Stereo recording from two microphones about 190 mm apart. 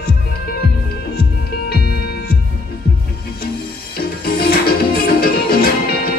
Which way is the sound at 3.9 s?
55° left (ahead or behind).